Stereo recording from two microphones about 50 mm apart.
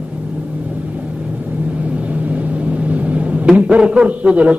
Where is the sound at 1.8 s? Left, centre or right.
Right.